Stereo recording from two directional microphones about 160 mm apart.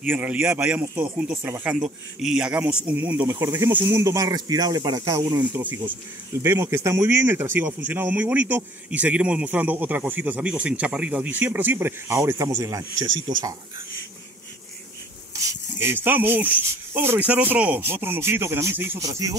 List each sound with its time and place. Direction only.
0.0 s speech: 10° right (ahead or behind)
5.5 s speech: 10° right (ahead or behind)
15.3 s speech: 20° right (ahead or behind)